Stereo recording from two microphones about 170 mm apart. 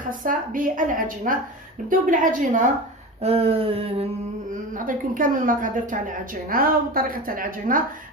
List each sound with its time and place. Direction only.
0.2 s a woman's voice: 55° right (ahead or behind)
3.2 s a sound: 35° right (ahead or behind)
4.7 s a woman's voice: 50° right (ahead or behind)